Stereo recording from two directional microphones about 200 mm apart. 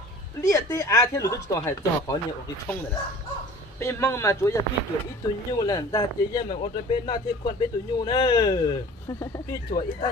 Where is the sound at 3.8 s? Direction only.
15° left (ahead or behind).